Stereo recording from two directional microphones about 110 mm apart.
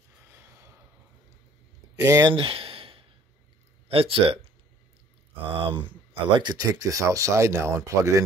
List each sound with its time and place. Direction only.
0.3 s gasp: 20° right (ahead or behind)
2.0 s speech: 30° right (ahead or behind)
2.3 s a sound: 55° right (ahead or behind)
3.9 s speech: 60° right (ahead or behind)
5.7 s speech: 50° right (ahead or behind); by 8.2 s 30° right (ahead or behind)